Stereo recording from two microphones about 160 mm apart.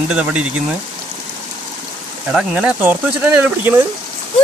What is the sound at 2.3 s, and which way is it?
Speech, 5° right (ahead or behind).